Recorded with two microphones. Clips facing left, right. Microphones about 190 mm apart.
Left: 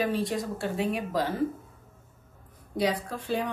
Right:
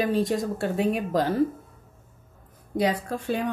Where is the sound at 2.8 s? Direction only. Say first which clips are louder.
Right 3 dB; 50° right (ahead or behind).